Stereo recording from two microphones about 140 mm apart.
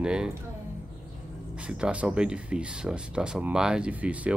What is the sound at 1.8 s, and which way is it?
Speech, 10° right (ahead or behind).